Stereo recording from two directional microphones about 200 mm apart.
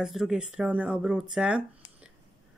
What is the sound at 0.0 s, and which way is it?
Speech, centre (ahead or behind).